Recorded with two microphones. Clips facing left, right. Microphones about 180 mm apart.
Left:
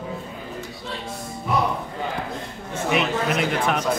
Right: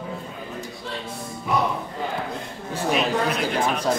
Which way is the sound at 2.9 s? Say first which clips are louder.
Left 1 dB; 60° left (ahead or behind).